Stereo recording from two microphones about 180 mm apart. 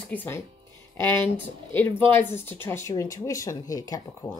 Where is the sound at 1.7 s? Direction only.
10° left (ahead or behind).